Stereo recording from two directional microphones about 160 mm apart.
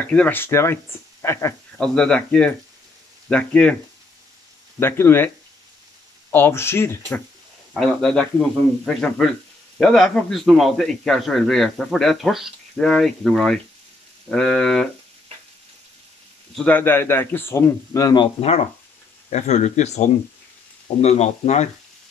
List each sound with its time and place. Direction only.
0.1 s speech: 10° left (ahead or behind)
1.8 s a man's voice: 5° left (ahead or behind)
4.7 s speech: 15° left (ahead or behind)
6.3 s speech: 15° left (ahead or behind)
7.7 s a man's voice: 5° left (ahead or behind)
16.6 s speech: 10° left (ahead or behind)
18.4 s speech: 40° left (ahead or behind)